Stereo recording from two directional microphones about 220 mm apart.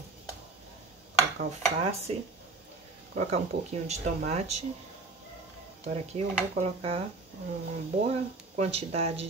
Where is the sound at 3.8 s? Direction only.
30° right (ahead or behind).